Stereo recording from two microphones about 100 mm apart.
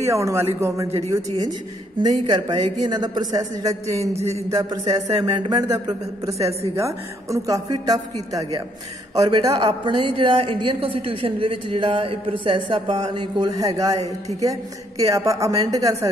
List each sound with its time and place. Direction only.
0.0 s a man's voice: 30° right (ahead or behind)
2.0 s a man's voice: 40° right (ahead or behind)
9.8 s a woman's voice: 60° right (ahead or behind)
12.9 s a man's voice: 50° right (ahead or behind)
13.6 s a man's voice: 35° right (ahead or behind)